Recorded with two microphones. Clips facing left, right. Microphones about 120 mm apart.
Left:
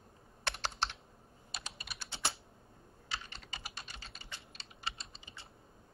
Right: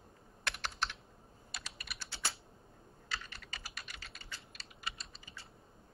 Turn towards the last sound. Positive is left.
turn(degrees=25)  # may be behind; listen again after turning